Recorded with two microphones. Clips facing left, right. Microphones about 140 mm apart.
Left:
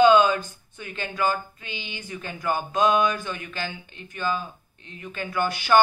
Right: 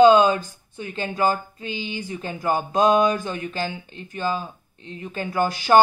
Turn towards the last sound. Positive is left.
turn(degrees=-35)  # may be behind; listen again after turning